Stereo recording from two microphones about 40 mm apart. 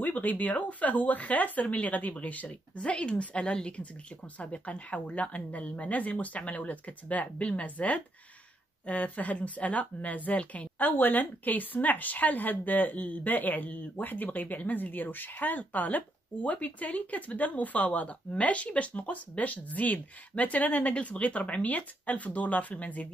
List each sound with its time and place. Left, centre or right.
0.0 s a woman's voice: left
2.4 s speech: left
7.7 s a woman's voice: left
13.0 s speech: left
13.3 s a woman's voice: left